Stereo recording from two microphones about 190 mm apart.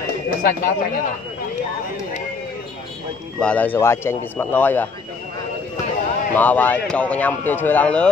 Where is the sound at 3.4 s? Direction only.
5° left (ahead or behind).